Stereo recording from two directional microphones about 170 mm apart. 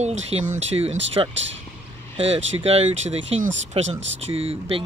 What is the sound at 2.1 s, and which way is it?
Speech, 35° right (ahead or behind).